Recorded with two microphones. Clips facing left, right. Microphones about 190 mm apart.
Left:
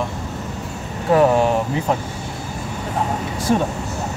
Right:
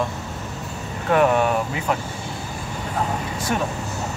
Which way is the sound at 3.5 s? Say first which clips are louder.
Left 6 dB; 30° left (ahead or behind).